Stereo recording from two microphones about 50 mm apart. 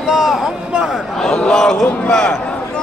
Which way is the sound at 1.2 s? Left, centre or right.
Centre.